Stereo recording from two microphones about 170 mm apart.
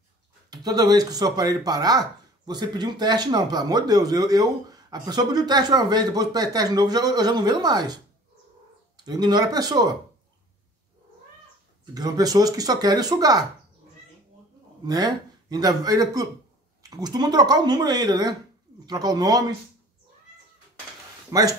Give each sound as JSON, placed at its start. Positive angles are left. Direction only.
{"t": 0.5, "sound": "speech", "side_deg": -25}
{"t": 11.8, "sound": "speech", "side_deg": -20}
{"t": 14.9, "sound": "speech", "side_deg": -25}
{"t": 21.3, "sound": "speech", "side_deg": -20}